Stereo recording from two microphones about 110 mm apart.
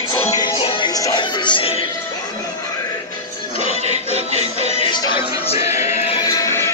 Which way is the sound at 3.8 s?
75° right (ahead or behind).